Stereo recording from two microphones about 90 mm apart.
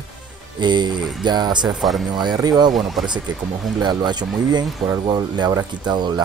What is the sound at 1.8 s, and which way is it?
Speech, centre (ahead or behind).